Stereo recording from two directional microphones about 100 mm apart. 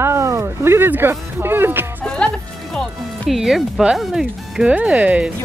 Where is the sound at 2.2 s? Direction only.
10° left (ahead or behind).